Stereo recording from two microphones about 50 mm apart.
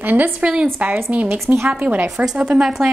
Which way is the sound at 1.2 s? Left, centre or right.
Right.